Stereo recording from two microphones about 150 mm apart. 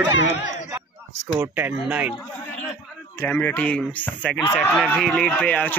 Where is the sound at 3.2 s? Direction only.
10° left (ahead or behind).